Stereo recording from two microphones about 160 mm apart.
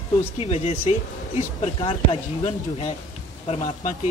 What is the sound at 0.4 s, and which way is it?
Speech, 40° left (ahead or behind).